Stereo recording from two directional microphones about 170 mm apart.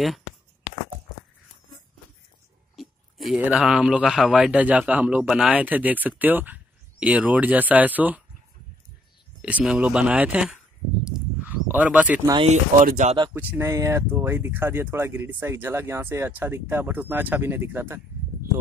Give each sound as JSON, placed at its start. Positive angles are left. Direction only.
{"t": 2.7, "sound": "speech", "side_deg": 0}
{"t": 9.4, "sound": "speech", "side_deg": -5}
{"t": 12.4, "sound": "speech", "side_deg": -45}
{"t": 13.3, "sound": "speech", "side_deg": -10}